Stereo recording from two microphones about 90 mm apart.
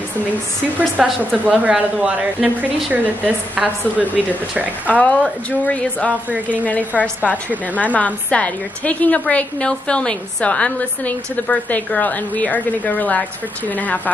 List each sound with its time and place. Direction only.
1.0 s a woman's voice: 5° right (ahead or behind)
1.3 s a woman's voice: 15° right (ahead or behind)
4.8 s a woman's voice: 15° left (ahead or behind)